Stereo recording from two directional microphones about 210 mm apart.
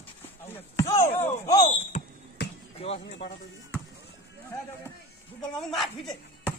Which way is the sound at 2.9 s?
55° left (ahead or behind).